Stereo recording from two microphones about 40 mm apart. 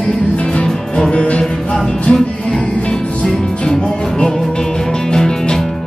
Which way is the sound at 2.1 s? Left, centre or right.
Centre.